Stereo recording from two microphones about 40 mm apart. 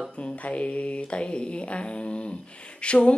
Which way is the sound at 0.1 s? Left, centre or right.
Left.